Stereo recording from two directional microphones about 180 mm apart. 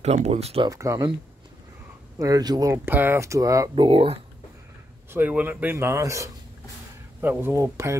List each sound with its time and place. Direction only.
0.0 s speech: 35° right (ahead or behind)
0.7 s speech: 20° right (ahead or behind)
2.1 s speech: 20° right (ahead or behind)
5.1 s speech: 10° right (ahead or behind)